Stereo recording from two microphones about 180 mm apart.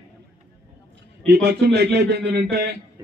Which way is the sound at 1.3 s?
70° right (ahead or behind).